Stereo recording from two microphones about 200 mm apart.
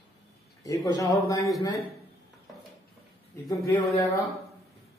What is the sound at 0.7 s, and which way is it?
Speech, 15° left (ahead or behind).